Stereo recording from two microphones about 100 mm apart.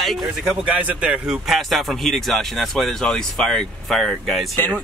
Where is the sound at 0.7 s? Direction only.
15° right (ahead or behind).